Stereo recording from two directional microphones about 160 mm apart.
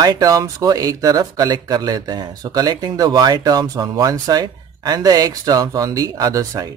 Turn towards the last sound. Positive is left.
turn(degrees=-20)  # may be behind; listen again after turning